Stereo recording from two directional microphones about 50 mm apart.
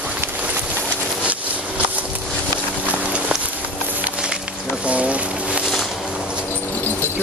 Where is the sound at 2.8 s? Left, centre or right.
Right.